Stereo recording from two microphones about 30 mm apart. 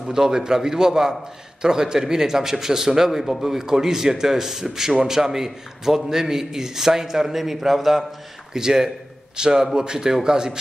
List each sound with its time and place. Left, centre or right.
0.1 s a man's voice: right
7.3 s a man's voice: centre
8.5 s a man's voice: right